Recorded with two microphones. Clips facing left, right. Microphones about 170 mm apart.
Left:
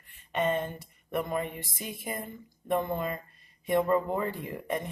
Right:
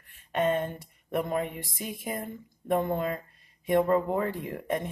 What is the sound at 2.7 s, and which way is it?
Speech, 15° right (ahead or behind).